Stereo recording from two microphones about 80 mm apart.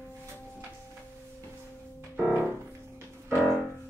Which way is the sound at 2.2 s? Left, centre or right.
Centre.